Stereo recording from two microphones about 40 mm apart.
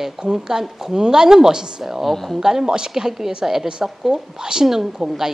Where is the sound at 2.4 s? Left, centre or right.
Centre.